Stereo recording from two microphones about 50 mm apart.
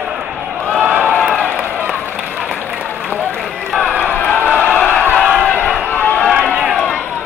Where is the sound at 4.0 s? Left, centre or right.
Left.